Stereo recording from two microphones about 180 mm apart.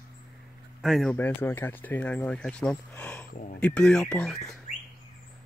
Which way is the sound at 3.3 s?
45° left (ahead or behind).